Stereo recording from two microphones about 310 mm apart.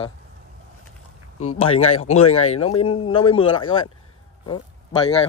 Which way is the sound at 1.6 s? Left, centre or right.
Centre.